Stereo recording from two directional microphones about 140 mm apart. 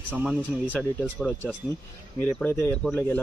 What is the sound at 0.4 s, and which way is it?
Speech, 10° left (ahead or behind).